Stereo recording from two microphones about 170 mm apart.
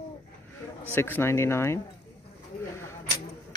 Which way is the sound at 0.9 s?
15° left (ahead or behind).